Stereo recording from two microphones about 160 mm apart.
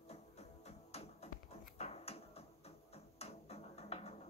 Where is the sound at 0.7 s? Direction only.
40° left (ahead or behind).